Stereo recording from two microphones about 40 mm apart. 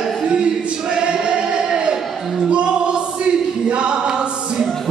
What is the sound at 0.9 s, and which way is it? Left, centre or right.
Choir, right.